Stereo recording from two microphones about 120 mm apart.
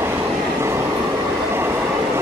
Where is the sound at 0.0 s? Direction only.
20° right (ahead or behind).